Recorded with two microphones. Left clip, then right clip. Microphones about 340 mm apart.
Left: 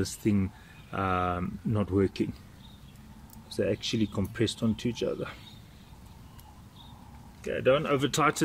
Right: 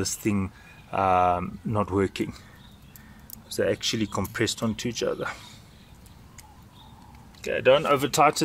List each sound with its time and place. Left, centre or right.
0.0 s speech: centre
3.4 s speech: centre
7.6 s speech: centre